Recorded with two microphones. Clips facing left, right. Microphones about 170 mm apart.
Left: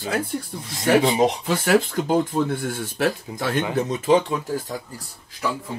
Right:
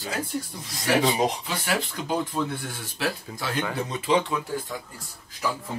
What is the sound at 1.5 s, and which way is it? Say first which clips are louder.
Speech: left 9 dB; 50° left (ahead or behind).